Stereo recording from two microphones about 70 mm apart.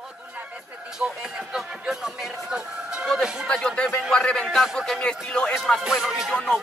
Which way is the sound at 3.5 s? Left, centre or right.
Centre.